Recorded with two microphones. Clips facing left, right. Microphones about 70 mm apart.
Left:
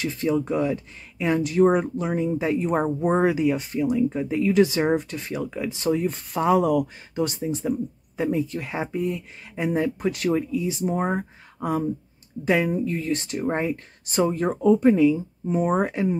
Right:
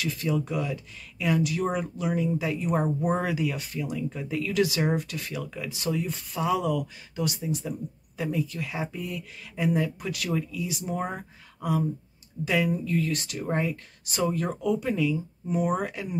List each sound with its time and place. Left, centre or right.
0.0 s speech: left